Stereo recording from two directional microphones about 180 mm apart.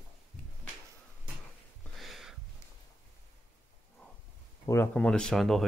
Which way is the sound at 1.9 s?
Centre (ahead or behind).